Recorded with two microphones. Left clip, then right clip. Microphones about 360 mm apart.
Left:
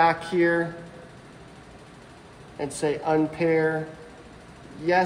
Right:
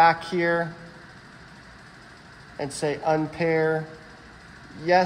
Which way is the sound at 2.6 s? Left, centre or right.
Centre.